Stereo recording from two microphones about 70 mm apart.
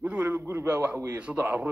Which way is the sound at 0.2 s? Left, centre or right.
Right.